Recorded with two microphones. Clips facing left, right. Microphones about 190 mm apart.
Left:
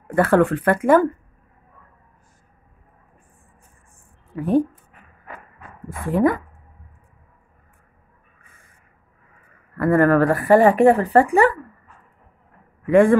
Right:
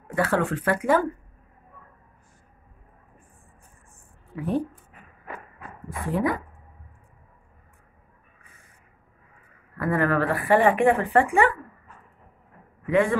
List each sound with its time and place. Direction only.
0.1 s speech: 55° left (ahead or behind)
4.4 s speech: 45° left (ahead or behind)
5.9 s speech: 50° left (ahead or behind)
9.8 s speech: 50° left (ahead or behind)
12.9 s speech: 50° left (ahead or behind)